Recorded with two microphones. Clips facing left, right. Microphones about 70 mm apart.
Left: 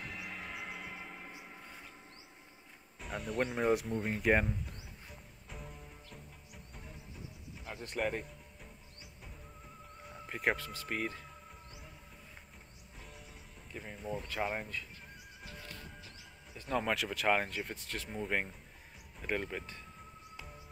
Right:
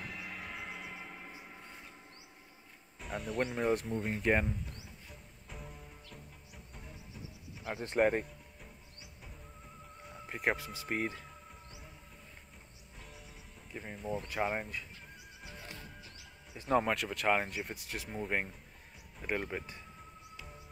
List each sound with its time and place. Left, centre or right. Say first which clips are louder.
0.0 s music: even; centre
1.4 s a sound: even; centre
3.0 s speech: even; centre
5.1 s music: even; centre
7.7 s speech: right 6 dB; right
8.0 s speech: right 7 dB; right
10.0 s music: even; centre
10.6 s music: right 2 dB; centre
13.7 s speech: right 2 dB; centre
15.4 s music: right 1 dB; centre
16.5 s speech: right 5 dB; centre
16.8 s speech: even; centre
20.3 s music: even; centre